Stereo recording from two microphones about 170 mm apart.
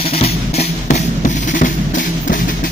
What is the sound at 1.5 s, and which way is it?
Music, 50° left (ahead or behind).